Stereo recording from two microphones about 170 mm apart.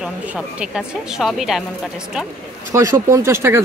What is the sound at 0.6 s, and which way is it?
Speech, 5° right (ahead or behind).